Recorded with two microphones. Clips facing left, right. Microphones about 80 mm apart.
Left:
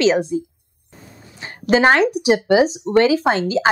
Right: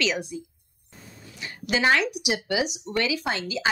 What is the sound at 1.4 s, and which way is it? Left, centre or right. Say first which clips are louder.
Speech: left 10 dB; left.